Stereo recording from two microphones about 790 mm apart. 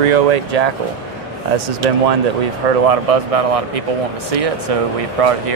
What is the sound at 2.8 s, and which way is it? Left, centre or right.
Speech, right.